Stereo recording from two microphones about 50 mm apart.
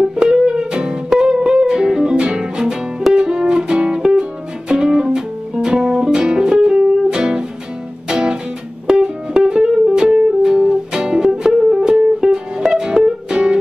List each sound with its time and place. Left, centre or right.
0.1 s music: centre